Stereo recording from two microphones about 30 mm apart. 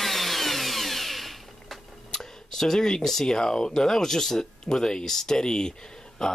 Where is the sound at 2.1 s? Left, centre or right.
Centre.